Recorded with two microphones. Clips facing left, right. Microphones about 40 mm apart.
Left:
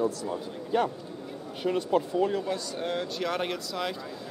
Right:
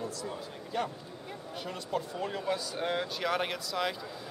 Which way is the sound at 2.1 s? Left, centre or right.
Centre.